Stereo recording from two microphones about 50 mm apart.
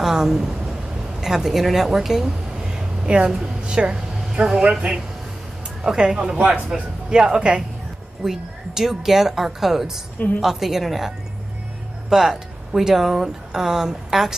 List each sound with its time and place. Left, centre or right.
0.0 s a woman's voice: centre
5.9 s speech: centre
10.1 s a woman's voice: left
10.4 s speech: centre